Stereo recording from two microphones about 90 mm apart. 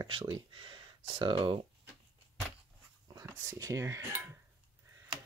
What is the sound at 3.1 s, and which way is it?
Speech, 35° right (ahead or behind).